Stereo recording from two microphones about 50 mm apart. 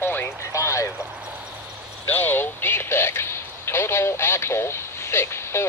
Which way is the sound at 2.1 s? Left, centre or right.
Left.